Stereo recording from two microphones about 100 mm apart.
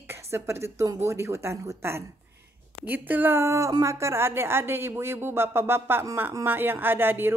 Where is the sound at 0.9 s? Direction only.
25° right (ahead or behind).